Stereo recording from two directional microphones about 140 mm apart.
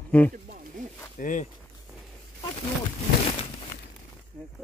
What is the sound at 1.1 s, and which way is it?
Speech, 70° left (ahead or behind).